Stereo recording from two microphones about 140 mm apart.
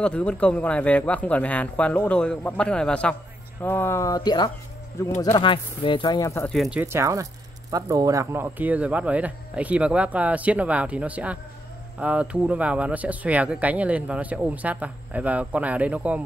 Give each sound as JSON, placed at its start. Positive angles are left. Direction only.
{"t": 0.0, "sound": "speech", "side_deg": 10}
{"t": 5.0, "sound": "speech", "side_deg": 20}
{"t": 5.4, "sound": "speech", "side_deg": 35}
{"t": 6.5, "sound": "speech", "side_deg": 0}
{"t": 6.8, "sound": "speech", "side_deg": -20}